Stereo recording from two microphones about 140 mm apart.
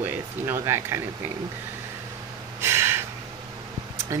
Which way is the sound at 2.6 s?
15° right (ahead or behind).